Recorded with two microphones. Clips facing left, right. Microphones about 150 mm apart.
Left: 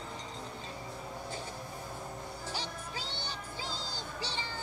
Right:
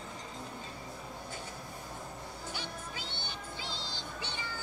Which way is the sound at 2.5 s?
35° left (ahead or behind).